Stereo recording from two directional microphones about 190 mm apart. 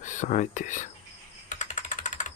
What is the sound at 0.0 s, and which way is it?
Speech, 40° left (ahead or behind).